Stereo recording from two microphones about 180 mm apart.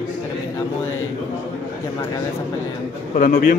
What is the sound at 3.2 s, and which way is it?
Speech, 50° left (ahead or behind).